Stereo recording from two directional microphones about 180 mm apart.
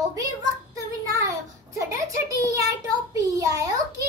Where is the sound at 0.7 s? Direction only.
20° right (ahead or behind).